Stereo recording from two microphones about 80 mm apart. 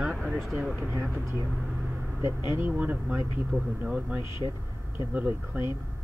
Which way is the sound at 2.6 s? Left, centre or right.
Right.